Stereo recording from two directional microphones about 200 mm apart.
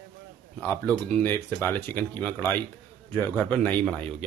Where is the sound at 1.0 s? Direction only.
10° left (ahead or behind).